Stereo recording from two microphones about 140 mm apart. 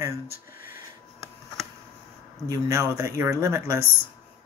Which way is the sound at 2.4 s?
20° right (ahead or behind).